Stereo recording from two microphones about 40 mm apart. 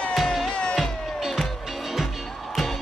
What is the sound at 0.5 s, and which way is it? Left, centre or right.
Music, left.